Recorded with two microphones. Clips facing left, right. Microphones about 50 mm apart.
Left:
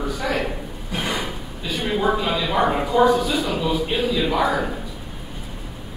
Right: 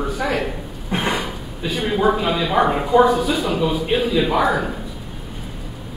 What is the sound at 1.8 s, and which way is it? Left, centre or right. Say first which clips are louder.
A man's voice: right 3 dB; centre.